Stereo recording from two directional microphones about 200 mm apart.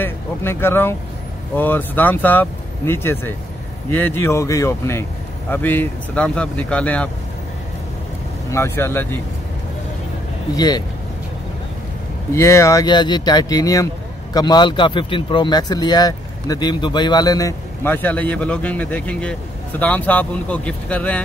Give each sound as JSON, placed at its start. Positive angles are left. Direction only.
{"t": 0.0, "sound": "speech", "side_deg": 10}
{"t": 8.5, "sound": "speech", "side_deg": 15}
{"t": 10.5, "sound": "a man's voice", "side_deg": 20}
{"t": 12.4, "sound": "a man's voice", "side_deg": 15}